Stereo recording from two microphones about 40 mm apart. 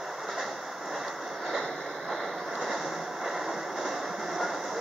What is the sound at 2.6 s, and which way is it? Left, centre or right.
Music, centre.